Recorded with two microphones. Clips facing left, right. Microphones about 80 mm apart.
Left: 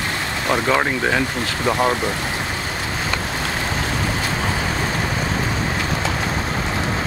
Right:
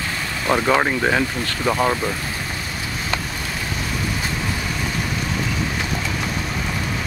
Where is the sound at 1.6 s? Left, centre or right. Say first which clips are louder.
Left 1 dB; centre.